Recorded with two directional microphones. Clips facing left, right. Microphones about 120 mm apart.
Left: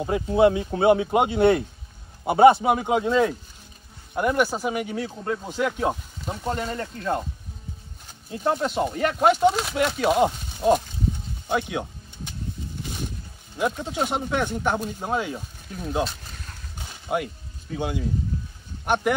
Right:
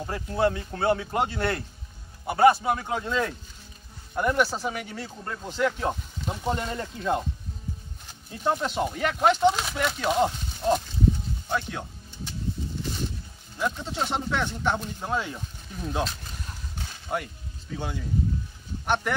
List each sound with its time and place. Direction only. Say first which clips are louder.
0.0 s speech: left 7 dB; 15° left (ahead or behind); by 7.2 s centre (ahead or behind)
8.3 s speech: left 2 dB; 5° left (ahead or behind)
13.6 s speech: left 4 dB; 15° left (ahead or behind)
16.7 s a sound: left 4 dB; 10° left (ahead or behind)
17.7 s speech: left 6 dB; 10° left (ahead or behind)